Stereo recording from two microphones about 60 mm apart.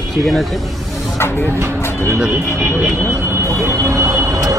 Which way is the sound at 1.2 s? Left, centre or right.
Left.